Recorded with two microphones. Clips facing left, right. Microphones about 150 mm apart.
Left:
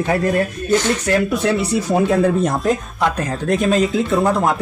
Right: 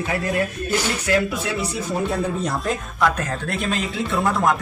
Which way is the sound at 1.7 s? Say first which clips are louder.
Left 8 dB; 90° left.